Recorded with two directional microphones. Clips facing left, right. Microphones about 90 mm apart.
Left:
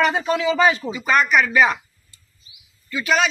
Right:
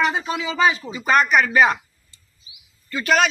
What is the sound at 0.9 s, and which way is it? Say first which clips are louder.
Speech: right 1 dB; 35° right (ahead or behind).